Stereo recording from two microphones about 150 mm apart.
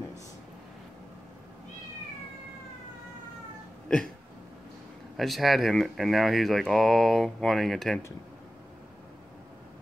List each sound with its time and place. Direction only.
5.1 s speech: centre (ahead or behind)